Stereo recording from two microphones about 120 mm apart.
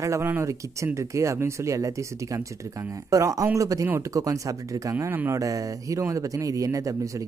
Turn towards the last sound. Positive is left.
turn(degrees=-25)  # may be behind; listen again after turning